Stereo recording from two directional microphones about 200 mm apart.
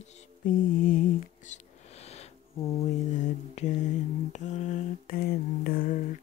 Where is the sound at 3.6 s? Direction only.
35° left (ahead or behind).